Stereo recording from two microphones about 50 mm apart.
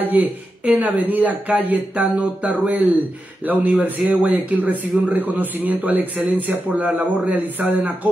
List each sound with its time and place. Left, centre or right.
0.0 s speech: right